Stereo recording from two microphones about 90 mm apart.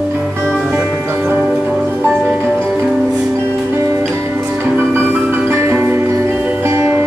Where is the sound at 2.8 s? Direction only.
5° right (ahead or behind).